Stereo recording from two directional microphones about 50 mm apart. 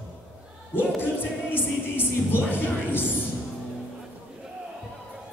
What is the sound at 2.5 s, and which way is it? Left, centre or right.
Speech, left.